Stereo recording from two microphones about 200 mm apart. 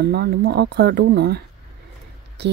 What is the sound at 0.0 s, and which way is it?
Speech, 55° right (ahead or behind).